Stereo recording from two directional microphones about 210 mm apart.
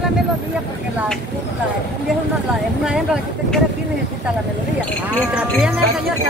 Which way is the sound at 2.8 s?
5° right (ahead or behind).